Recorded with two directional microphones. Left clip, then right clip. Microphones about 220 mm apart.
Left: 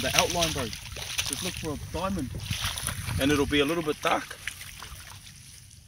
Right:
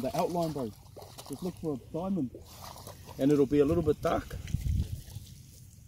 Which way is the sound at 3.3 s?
30° right (ahead or behind).